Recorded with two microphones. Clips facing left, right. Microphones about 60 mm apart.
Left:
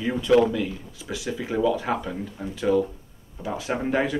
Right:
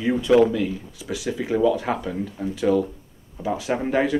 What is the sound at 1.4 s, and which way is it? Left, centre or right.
Speech, centre.